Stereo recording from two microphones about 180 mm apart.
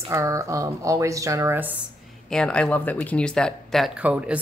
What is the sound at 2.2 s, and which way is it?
Speech, 5° left (ahead or behind).